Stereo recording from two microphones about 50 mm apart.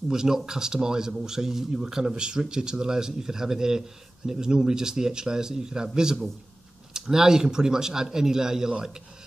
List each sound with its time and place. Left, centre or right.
0.1 s speech: centre